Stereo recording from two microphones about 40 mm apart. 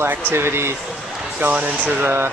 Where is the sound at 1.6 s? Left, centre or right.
Right.